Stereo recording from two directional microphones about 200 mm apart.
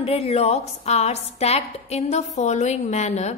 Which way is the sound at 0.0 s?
30° left (ahead or behind).